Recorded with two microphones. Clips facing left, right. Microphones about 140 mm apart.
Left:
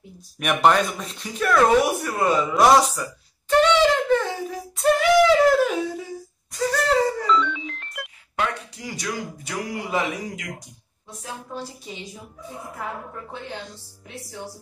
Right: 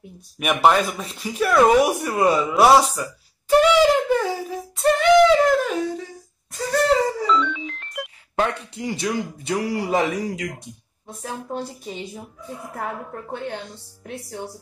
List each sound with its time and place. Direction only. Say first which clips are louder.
0.4 s speech: right 1 dB; 5° right (ahead or behind)
2.5 s a sound: right 1 dB; 5° right (ahead or behind)
7.2 s ringtone: even; centre (ahead or behind)
8.4 s speech: right 4 dB; 25° right (ahead or behind)
11.1 s a woman's voice: right 5 dB; 55° right (ahead or behind)